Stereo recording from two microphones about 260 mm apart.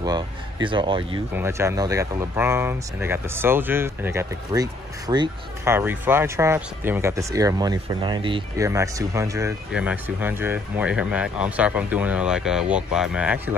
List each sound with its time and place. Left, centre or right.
0.0 s speech: centre